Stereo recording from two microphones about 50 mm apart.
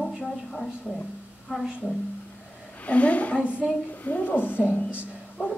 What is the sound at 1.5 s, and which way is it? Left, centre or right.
Speech, centre.